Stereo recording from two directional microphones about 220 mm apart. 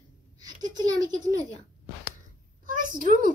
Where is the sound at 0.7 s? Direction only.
15° right (ahead or behind).